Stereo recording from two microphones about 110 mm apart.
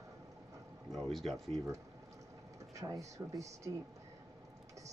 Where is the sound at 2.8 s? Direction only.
30° right (ahead or behind).